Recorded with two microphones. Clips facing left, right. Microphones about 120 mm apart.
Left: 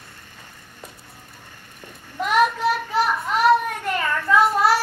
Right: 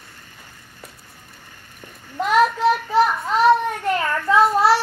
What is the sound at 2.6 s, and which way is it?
Child singing, 25° right (ahead or behind).